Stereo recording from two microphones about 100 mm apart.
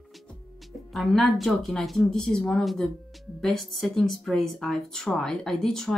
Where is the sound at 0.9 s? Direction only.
Centre (ahead or behind).